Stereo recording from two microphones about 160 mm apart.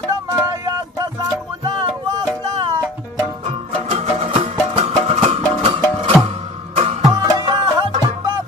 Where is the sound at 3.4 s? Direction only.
40° right (ahead or behind).